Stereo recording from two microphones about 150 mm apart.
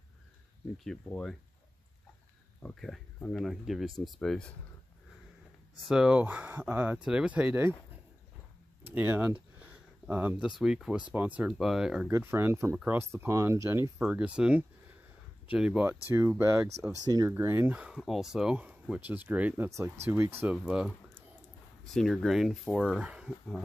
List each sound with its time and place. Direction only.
0.8 s speech: 5° left (ahead or behind)
2.6 s speech: 5° left (ahead or behind)
5.9 s speech: 5° right (ahead or behind)
8.9 s speech: 15° right (ahead or behind)
12.1 s speech: 15° right (ahead or behind)
20.4 s speech: 5° right (ahead or behind)
21.9 s speech: centre (ahead or behind)